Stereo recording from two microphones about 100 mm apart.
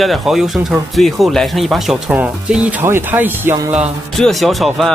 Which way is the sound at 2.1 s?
10° right (ahead or behind).